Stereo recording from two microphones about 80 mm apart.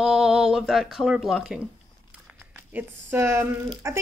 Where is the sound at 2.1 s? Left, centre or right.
Centre.